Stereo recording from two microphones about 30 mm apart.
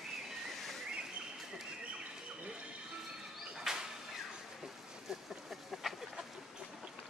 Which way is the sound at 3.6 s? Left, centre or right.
Centre.